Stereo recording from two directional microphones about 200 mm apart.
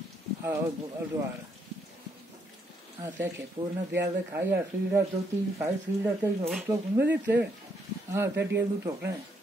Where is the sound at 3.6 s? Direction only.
25° right (ahead or behind).